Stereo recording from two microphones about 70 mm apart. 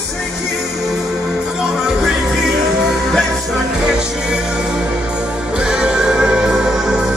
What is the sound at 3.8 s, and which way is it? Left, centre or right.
Music, centre.